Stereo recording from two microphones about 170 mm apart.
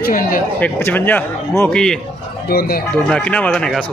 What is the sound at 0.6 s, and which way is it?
Speech, 10° left (ahead or behind).